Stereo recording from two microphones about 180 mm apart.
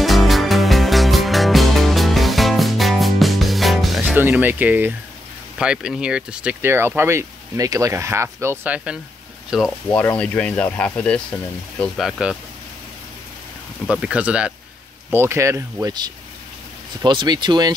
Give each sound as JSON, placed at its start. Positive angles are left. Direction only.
{"t": 0.0, "sound": "music", "side_deg": 0}
{"t": 4.2, "sound": "speech", "side_deg": -10}
{"t": 9.8, "sound": "speech", "side_deg": 10}
{"t": 13.8, "sound": "speech", "side_deg": -5}